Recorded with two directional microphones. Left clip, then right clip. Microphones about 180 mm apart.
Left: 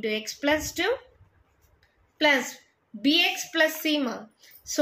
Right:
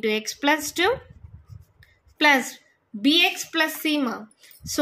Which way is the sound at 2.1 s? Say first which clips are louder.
Right 4 dB; 45° right (ahead or behind).